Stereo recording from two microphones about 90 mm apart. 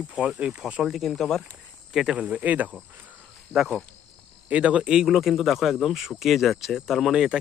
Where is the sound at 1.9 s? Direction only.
10° right (ahead or behind).